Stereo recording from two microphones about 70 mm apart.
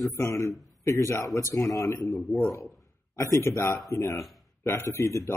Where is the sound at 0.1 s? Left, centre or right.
Left.